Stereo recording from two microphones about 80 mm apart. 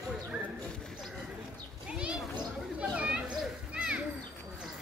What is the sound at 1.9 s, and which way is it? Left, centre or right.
Children playing, centre.